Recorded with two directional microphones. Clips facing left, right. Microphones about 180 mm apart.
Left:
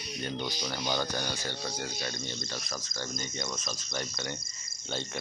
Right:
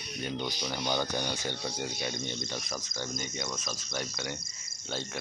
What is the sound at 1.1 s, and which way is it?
Speech, 20° right (ahead or behind).